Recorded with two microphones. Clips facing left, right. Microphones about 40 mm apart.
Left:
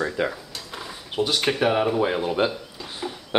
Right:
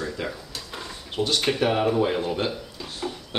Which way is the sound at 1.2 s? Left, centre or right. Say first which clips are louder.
Left 1 dB; centre.